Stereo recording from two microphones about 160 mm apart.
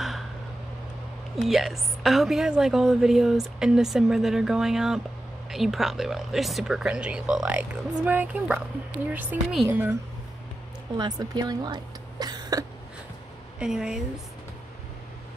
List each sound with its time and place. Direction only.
1.3 s a woman's voice: centre (ahead or behind)
11.0 s speech: 25° right (ahead or behind)
13.6 s a woman's voice: 5° right (ahead or behind)